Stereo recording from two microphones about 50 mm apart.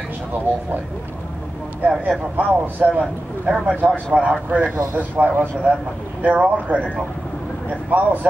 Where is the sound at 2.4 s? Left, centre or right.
Right.